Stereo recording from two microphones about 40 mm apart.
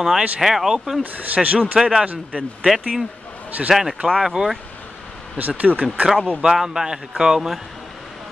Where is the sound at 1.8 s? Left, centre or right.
Centre.